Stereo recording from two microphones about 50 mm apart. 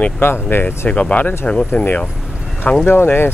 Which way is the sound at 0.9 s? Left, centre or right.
Left.